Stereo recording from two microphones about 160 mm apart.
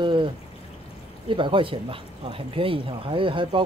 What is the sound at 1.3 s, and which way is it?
Speech, 30° right (ahead or behind).